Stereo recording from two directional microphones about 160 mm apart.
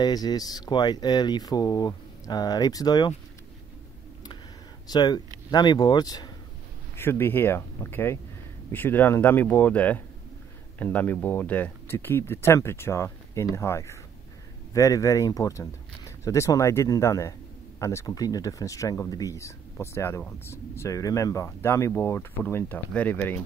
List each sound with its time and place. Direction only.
0.0 s speech: 25° left (ahead or behind)
4.8 s speech: 25° left (ahead or behind)
7.0 s speech: 15° left (ahead or behind)